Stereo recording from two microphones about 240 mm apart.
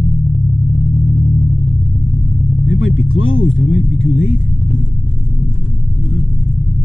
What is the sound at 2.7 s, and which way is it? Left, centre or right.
Vehicle, left.